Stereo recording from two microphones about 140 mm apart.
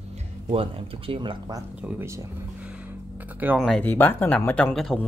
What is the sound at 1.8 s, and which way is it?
Speech, 15° right (ahead or behind).